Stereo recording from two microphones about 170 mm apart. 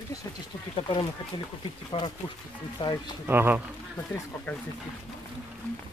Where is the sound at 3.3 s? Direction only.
10° right (ahead or behind).